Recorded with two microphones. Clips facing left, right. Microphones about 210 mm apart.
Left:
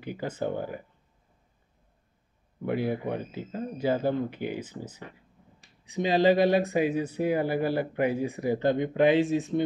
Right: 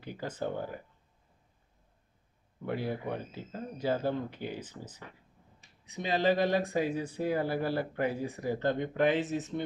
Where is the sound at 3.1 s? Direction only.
15° left (ahead or behind).